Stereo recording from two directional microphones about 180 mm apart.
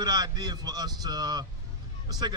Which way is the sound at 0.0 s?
20° right (ahead or behind).